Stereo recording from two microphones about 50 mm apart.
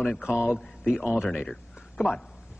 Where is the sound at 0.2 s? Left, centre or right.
Centre.